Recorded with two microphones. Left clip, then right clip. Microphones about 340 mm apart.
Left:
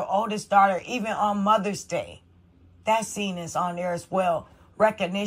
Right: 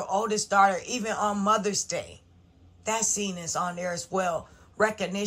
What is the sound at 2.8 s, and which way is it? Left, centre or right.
A woman's voice, centre.